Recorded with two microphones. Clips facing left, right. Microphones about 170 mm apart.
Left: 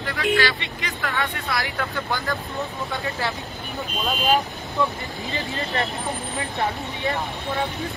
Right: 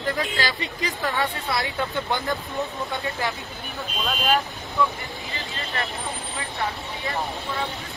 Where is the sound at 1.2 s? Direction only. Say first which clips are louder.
Right 1 dB; 25° right (ahead or behind).